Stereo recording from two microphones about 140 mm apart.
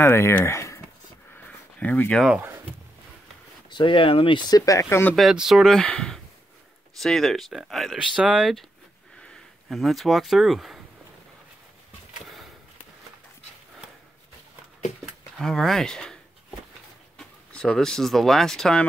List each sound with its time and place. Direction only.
0.0 s speech: 15° left (ahead or behind)
1.3 s a sound: 10° left (ahead or behind)
2.2 s speech: 10° right (ahead or behind)
3.7 s speech: 35° left (ahead or behind); by 5.1 s 20° left (ahead or behind)
5.1 s speech: centre (ahead or behind)
15.3 s a sound: 5° left (ahead or behind)
17.2 s speech: 5° left (ahead or behind)